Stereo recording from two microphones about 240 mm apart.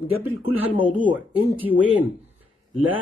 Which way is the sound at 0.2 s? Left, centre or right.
Centre.